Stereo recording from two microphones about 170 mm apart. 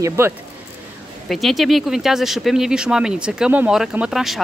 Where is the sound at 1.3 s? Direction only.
Centre (ahead or behind).